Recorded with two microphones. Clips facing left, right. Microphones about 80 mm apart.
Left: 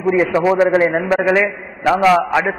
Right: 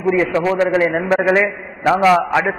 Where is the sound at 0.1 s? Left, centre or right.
Centre.